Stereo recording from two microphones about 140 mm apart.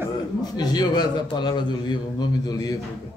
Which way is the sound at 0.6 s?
30° left (ahead or behind).